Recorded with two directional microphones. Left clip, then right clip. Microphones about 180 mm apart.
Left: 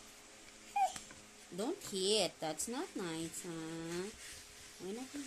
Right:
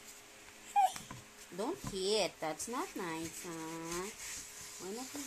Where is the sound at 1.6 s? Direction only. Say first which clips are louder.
Right 1 dB; 35° left (ahead or behind).